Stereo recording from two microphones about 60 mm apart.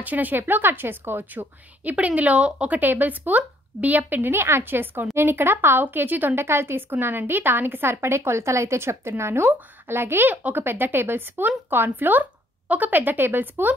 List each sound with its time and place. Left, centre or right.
0.0 s speech: right
1.9 s speech: right